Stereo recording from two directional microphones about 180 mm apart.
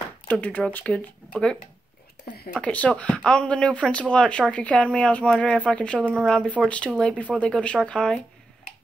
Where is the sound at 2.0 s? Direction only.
65° left (ahead or behind).